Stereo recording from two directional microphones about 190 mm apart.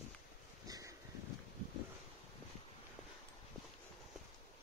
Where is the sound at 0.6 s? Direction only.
20° right (ahead or behind).